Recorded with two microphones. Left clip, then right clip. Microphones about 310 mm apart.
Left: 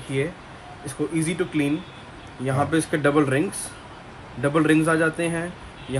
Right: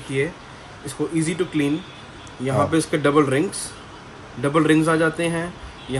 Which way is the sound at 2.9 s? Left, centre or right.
Centre.